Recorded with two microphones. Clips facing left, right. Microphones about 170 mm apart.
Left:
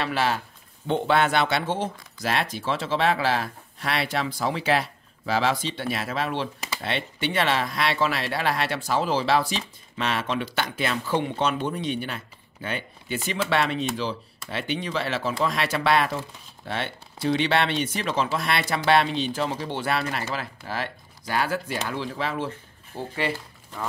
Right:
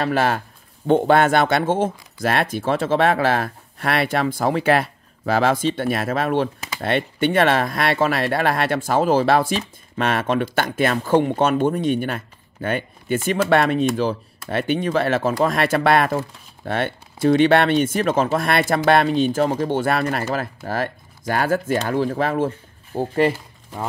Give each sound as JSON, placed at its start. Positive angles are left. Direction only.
{"t": 0.0, "sound": "speech", "side_deg": -50}